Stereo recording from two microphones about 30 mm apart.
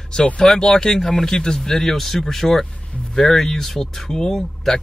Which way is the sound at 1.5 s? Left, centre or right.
Centre.